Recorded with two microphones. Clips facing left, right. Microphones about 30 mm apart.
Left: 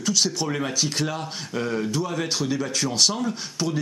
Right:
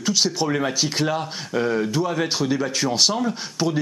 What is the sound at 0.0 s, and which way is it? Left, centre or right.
Speech, centre.